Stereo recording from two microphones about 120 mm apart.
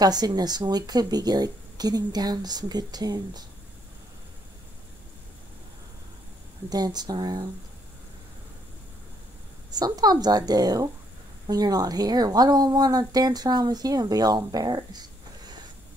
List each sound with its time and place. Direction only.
0.0 s a woman's voice: 35° right (ahead or behind)
6.7 s a woman's voice: 35° right (ahead or behind)
9.7 s a woman's voice: 35° right (ahead or behind)